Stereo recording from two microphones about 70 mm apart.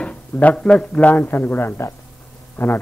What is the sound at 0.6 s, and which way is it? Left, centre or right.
A man's voice, centre.